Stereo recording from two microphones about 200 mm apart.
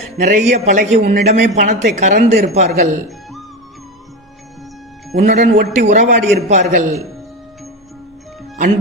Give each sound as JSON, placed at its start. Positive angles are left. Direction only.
{"t": 0.2, "sound": "a man's voice", "side_deg": -40}
{"t": 5.1, "sound": "a man's voice", "side_deg": -35}